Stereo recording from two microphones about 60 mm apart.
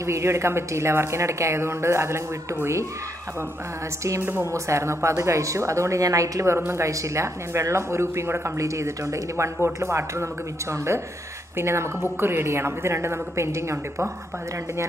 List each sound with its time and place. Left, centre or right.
0.0 s speech: right
4.2 s speech: right
6.4 s speech: right
11.5 s speech: right